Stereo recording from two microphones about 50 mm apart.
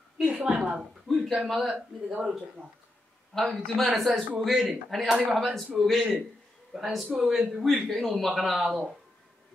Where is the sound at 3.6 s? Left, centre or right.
Centre.